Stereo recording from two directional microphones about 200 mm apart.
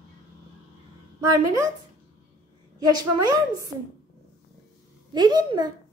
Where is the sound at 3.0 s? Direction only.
20° right (ahead or behind).